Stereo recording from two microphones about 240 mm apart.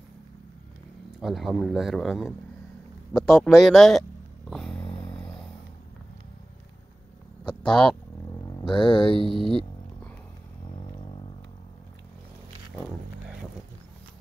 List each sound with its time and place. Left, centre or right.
1.2 s speech: centre
4.5 s a sound: centre
7.4 s speech: centre
8.5 s speech: centre